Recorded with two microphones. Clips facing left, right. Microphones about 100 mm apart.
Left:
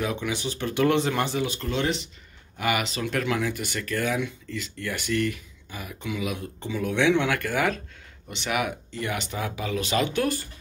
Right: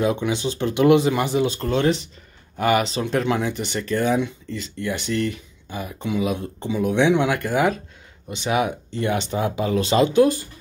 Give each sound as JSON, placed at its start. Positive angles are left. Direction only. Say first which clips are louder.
{"t": 0.0, "sound": "speech", "louder": "right 7 dB", "side_deg": -25}
{"t": 1.6, "sound": "speech", "louder": "right 6 dB", "side_deg": -40}
{"t": 10.1, "sound": "speech", "louder": "right 9 dB", "side_deg": -20}